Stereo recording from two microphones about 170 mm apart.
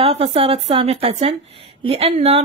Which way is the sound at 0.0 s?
35° right (ahead or behind).